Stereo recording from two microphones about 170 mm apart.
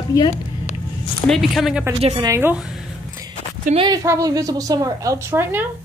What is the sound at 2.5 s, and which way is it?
Speech, 5° right (ahead or behind).